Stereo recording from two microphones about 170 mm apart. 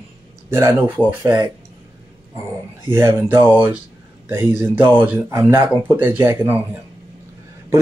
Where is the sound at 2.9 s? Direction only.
15° right (ahead or behind).